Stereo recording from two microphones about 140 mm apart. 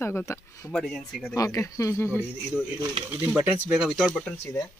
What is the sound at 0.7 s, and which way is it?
Speech, centre (ahead or behind).